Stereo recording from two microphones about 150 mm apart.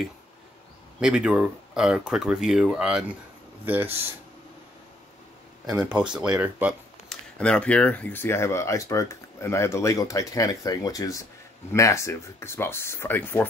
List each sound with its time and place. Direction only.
1.0 s speech: 5° right (ahead or behind)
5.7 s speech: 5° right (ahead or behind)
7.1 s speech: 5° left (ahead or behind)